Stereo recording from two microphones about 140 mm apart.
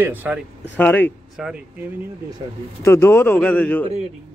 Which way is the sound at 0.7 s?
10° left (ahead or behind).